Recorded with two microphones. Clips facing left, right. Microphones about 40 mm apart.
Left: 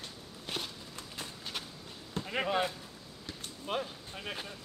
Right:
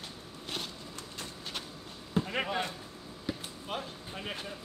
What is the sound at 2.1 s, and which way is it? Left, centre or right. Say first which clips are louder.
Basketball bounce: right 3 dB; centre.